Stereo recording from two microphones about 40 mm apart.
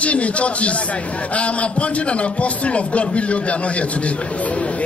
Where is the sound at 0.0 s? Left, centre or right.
Left.